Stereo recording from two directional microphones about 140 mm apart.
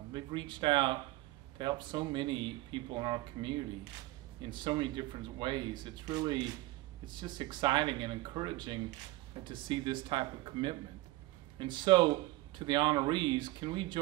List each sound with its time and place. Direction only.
0.1 s speech: 35° right (ahead or behind)